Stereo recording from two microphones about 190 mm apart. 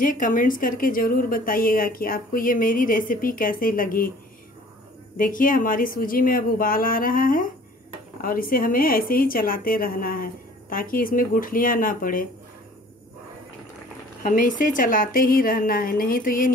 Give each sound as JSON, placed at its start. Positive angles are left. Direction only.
{"t": 0.0, "sound": "a woman's voice", "side_deg": 45}
{"t": 5.1, "sound": "a woman's voice", "side_deg": 45}
{"t": 14.2, "sound": "a woman's voice", "side_deg": 45}